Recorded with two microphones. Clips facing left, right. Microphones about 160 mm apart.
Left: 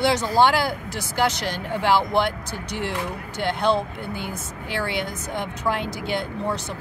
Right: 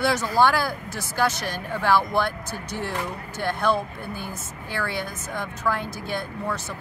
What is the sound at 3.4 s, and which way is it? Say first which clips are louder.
Speech: left 2 dB; 25° left (ahead or behind).